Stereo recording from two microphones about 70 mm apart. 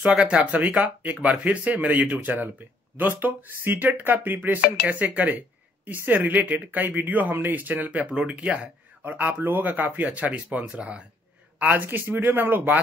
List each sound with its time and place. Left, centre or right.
0.0 s speech: centre